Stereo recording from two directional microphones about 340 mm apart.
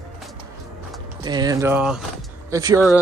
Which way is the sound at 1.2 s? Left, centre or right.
Centre.